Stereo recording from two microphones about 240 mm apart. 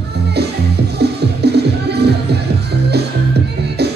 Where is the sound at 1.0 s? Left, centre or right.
Right.